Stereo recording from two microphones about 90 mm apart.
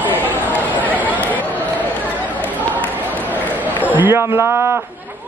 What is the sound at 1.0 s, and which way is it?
Chatter, 20° left (ahead or behind).